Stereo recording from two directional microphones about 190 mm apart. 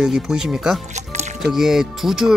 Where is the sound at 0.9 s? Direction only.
35° right (ahead or behind).